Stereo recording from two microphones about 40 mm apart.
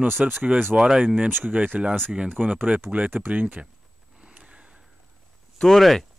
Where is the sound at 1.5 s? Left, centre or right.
Right.